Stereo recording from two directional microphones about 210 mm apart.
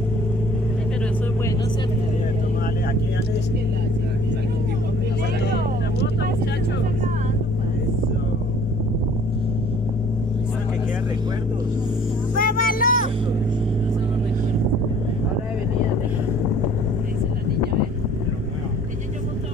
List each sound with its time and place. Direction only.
12.4 s vehicle: 45° left (ahead or behind)